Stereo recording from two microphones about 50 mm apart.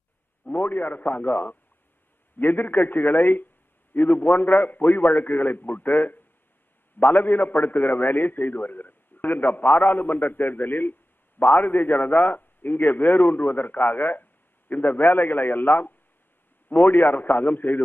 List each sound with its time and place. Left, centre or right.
0.7 s a man's voice: left